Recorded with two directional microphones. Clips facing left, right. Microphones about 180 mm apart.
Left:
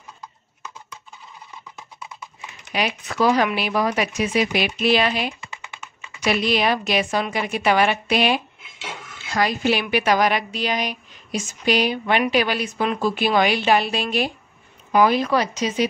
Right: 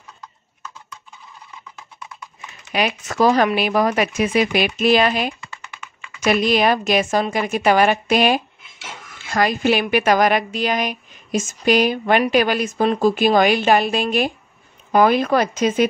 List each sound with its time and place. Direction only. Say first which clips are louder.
1.8 s clip-clop: left 1 dB; 10° left (ahead or behind)
2.7 s a woman's voice: right 3 dB; 50° right (ahead or behind)